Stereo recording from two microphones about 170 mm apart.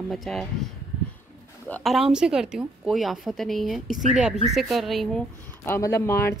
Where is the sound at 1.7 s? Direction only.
Centre (ahead or behind).